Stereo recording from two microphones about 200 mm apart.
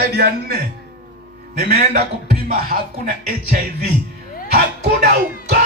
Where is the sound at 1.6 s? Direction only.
45° right (ahead or behind).